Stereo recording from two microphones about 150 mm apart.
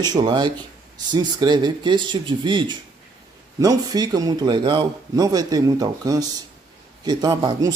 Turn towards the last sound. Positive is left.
turn(degrees=-25)  # may be behind; listen again after turning